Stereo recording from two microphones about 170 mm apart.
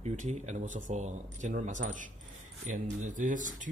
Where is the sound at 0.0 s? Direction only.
45° right (ahead or behind).